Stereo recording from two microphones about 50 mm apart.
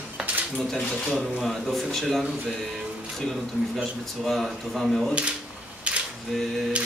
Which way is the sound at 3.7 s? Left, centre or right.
Centre.